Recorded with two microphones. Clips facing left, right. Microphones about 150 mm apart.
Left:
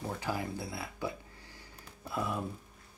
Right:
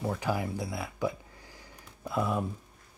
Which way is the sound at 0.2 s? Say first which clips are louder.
Right 4 dB; 15° right (ahead or behind).